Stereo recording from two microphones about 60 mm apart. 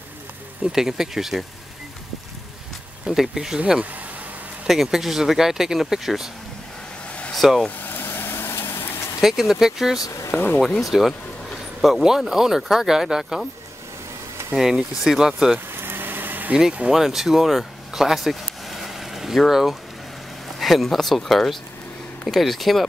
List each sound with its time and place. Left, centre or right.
0.7 s speech: centre
3.1 s speech: centre
7.1 s a sound: left
7.3 s speech: centre
7.8 s vehicle: left
9.2 s speech: centre
9.9 s speech: left
10.3 s speech: left
10.8 s speech: centre
14.6 s speech: centre
15.7 s vehicle: right
16.9 s speech: centre